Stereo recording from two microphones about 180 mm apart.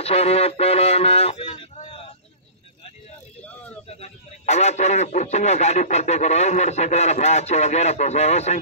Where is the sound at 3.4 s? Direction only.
10° left (ahead or behind).